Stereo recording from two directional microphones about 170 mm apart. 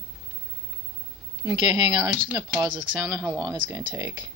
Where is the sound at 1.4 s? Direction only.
25° right (ahead or behind).